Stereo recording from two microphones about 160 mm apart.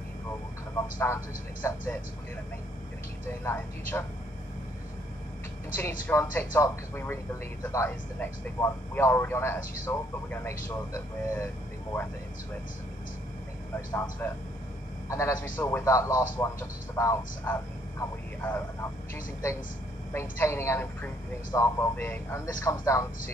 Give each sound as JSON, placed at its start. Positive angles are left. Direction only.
{"t": 0.9, "sound": "speech", "side_deg": 15}
{"t": 3.3, "sound": "speech", "side_deg": 15}
{"t": 5.8, "sound": "speech", "side_deg": 15}
{"t": 13.7, "sound": "speech", "side_deg": 15}
{"t": 20.1, "sound": "speech", "side_deg": 15}